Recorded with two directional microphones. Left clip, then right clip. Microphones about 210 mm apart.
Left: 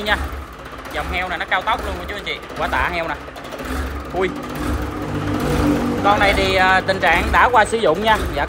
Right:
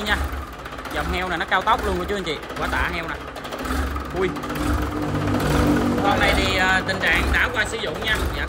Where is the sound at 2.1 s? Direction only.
5° right (ahead or behind).